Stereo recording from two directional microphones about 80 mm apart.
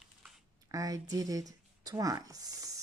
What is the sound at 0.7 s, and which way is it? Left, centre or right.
Speech, right.